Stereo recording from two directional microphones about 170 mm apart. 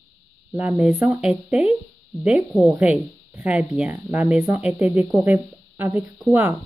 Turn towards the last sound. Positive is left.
turn(degrees=-10)  # may be behind; listen again after turning